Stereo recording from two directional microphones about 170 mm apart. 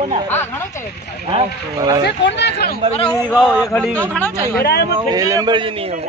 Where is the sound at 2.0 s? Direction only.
90° left.